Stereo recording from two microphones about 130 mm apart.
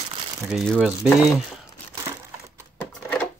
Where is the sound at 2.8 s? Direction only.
10° left (ahead or behind).